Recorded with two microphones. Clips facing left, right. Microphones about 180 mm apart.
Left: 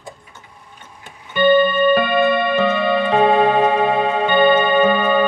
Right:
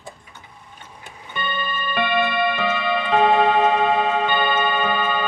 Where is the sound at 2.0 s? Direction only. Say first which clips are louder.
Left 5 dB; 40° left (ahead or behind).